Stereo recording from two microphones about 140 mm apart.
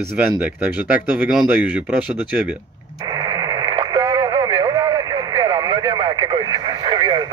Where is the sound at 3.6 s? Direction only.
30° right (ahead or behind).